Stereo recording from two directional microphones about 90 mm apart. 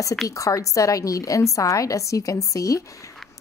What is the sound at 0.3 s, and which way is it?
A woman's voice, 35° left (ahead or behind).